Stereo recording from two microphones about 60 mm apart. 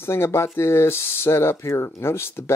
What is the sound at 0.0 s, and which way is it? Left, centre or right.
Speech, left.